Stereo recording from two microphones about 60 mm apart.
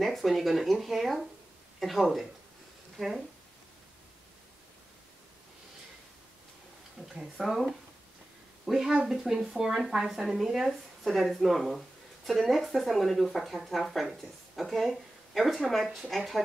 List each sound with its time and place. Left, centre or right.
0.0 s speech: centre
7.0 s speech: centre